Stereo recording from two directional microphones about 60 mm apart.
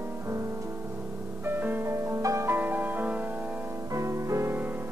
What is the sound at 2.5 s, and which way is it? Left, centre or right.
Music, right.